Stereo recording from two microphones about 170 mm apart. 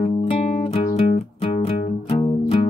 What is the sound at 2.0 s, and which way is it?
Music, 35° left (ahead or behind).